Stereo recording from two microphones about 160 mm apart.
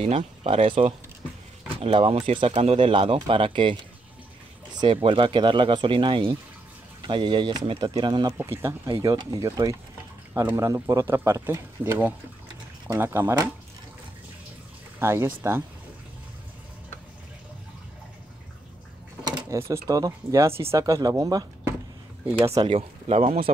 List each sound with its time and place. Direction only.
0.0 s speech: 40° right (ahead or behind)
8.4 s speech: 15° right (ahead or behind)
15.0 s speech: 15° right (ahead or behind)
19.2 s a sound: 25° right (ahead or behind)
19.7 s speech: 20° right (ahead or behind)
22.6 s speech: 35° right (ahead or behind)